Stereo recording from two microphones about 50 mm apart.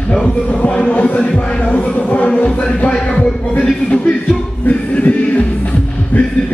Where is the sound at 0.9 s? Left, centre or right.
Left.